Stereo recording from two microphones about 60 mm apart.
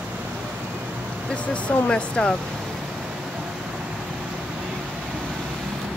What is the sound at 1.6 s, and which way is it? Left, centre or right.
Speech, centre.